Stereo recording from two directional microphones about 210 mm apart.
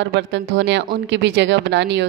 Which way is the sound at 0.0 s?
55° right (ahead or behind).